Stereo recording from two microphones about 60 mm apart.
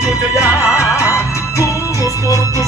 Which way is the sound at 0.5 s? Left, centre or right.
Left.